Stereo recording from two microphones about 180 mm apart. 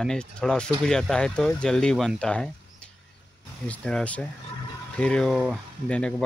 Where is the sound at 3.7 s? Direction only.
5° left (ahead or behind).